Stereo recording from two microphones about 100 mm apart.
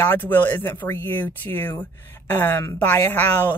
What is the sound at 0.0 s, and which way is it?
Speech, 20° left (ahead or behind).